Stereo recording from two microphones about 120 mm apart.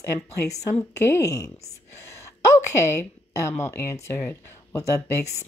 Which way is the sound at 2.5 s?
20° left (ahead or behind).